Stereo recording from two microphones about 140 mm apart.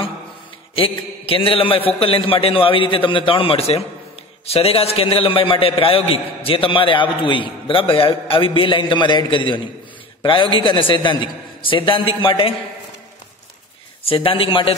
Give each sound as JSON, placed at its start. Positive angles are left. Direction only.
{"t": 0.7, "sound": "a man's voice", "side_deg": 40}
{"t": 14.0, "sound": "a man's voice", "side_deg": 40}